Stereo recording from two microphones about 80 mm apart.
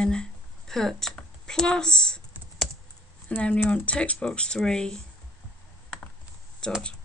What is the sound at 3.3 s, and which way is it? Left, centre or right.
Speech, centre.